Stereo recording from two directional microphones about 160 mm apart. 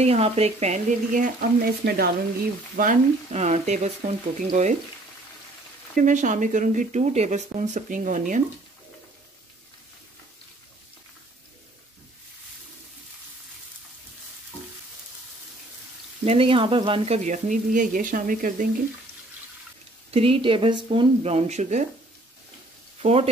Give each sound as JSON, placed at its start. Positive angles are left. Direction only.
{"t": 0.0, "sound": "speech", "side_deg": -40}
{"t": 2.7, "sound": "speech", "side_deg": -55}
{"t": 5.9, "sound": "speech", "side_deg": -50}
{"t": 16.3, "sound": "speech", "side_deg": -35}
{"t": 20.1, "sound": "speech", "side_deg": -35}
{"t": 23.0, "sound": "speech", "side_deg": -40}